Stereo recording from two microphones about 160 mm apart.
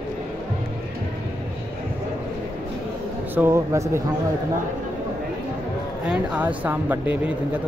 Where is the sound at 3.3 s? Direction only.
15° right (ahead or behind).